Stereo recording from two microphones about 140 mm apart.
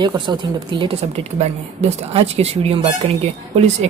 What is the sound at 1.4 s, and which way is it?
Speech, 50° right (ahead or behind).